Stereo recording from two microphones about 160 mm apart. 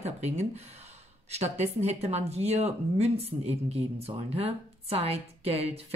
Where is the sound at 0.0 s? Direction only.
45° right (ahead or behind).